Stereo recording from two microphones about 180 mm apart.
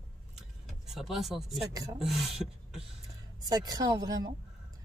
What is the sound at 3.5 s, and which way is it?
Speech, 20° right (ahead or behind).